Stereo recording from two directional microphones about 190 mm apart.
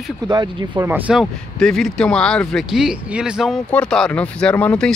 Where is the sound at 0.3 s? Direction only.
20° right (ahead or behind).